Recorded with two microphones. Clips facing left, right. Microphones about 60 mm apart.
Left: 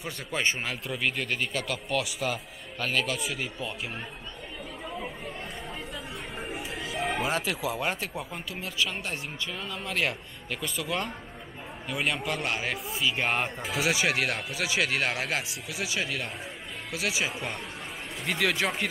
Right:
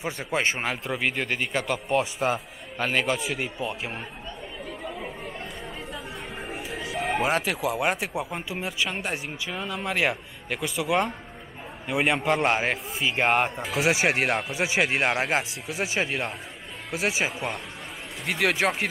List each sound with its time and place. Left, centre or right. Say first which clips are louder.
0.0 s speech: right 4 dB; right
2.3 s speech: right 5 dB; centre
6.7 s a sound: right 3 dB; centre
7.2 s speech: right 4 dB; centre; by 17.3 s right
18.2 s speech: right 3 dB; centre